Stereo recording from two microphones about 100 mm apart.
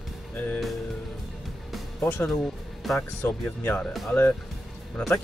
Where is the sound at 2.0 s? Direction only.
25° left (ahead or behind).